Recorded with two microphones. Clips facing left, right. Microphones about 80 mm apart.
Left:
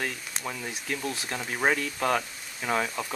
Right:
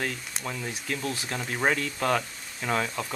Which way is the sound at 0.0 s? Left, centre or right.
Centre.